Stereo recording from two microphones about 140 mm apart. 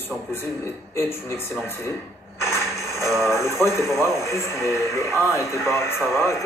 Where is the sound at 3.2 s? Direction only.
20° left (ahead or behind).